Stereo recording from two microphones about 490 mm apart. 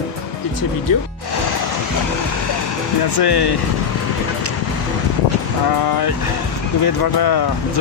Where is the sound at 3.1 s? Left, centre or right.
Left.